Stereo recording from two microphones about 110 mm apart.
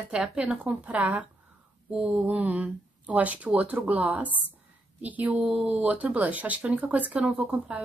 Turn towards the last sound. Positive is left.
turn(degrees=-10)  # may be behind; listen again after turning